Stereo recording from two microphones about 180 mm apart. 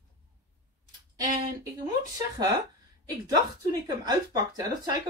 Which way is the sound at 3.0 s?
20° right (ahead or behind).